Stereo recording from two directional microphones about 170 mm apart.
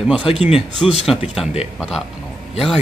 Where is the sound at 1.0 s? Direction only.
Centre (ahead or behind).